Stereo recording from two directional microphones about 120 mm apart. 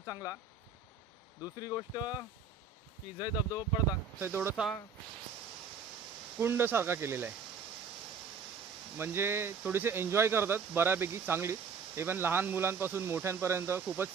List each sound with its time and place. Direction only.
0.0 s speech: 30° left (ahead or behind)
1.4 s speech: 30° left (ahead or behind)
4.2 s speech: 20° right (ahead or behind)
6.4 s speech: 20° right (ahead or behind)
8.9 s speech: 20° right (ahead or behind)